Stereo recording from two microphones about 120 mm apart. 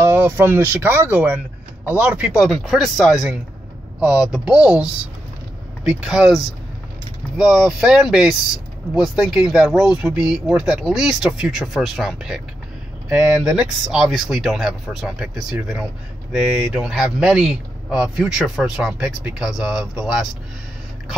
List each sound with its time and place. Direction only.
0.0 s speech: 20° right (ahead or behind)
5.9 s speech: 5° right (ahead or behind)